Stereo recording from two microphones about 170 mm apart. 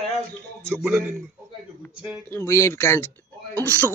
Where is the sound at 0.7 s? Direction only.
5° right (ahead or behind).